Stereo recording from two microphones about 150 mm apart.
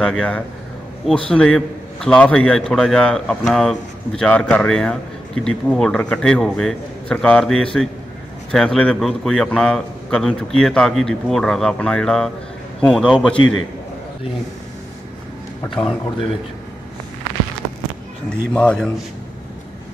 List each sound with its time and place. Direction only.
0.0 s a man's voice: 5° left (ahead or behind)
18.3 s speech: 5° left (ahead or behind)